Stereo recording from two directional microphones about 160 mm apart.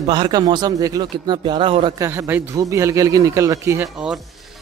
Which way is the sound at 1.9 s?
20° right (ahead or behind).